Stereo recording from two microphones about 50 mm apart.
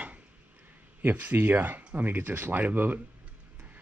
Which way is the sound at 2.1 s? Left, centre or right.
Right.